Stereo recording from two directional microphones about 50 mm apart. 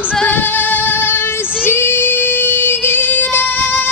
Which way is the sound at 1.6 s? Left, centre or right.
Left.